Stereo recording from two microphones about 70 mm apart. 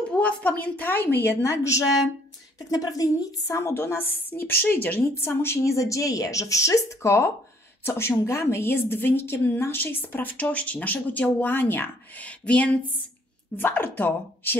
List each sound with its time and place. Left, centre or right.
0.2 s a woman's voice: left
1.4 s speech: left
2.7 s a woman's voice: left
5.6 s a woman's voice: left
12.4 s speech: centre
13.6 s a woman's voice: left